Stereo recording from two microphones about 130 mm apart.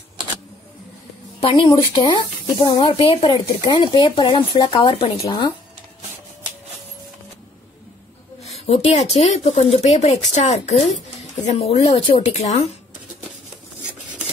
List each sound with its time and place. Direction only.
1.6 s speech: 40° left (ahead or behind)
8.4 s speech: 55° left (ahead or behind)